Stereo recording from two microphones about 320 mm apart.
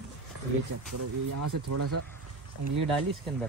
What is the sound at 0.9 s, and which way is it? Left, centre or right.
Speech, right.